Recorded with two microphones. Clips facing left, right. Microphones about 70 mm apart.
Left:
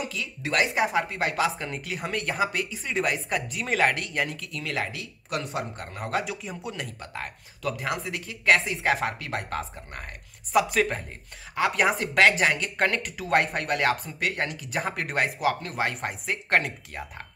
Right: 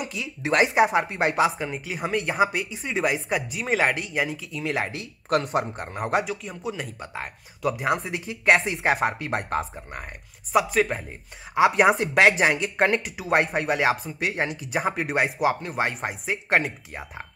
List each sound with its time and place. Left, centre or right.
0.1 s speech: centre
0.8 s speech: centre
5.4 s speech: right
6.2 s speech: centre
7.0 s speech: centre
8.3 s speech: centre
14.2 s speech: centre